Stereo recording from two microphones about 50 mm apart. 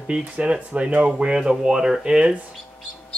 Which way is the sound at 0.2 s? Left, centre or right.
Right.